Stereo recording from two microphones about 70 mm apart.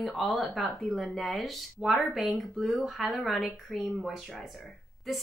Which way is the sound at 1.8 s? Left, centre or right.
Centre.